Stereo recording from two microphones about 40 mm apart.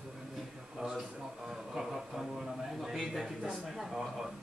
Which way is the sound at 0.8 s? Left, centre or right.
Centre.